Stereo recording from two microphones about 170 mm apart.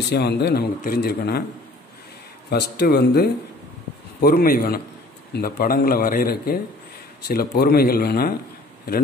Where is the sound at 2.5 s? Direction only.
70° left (ahead or behind).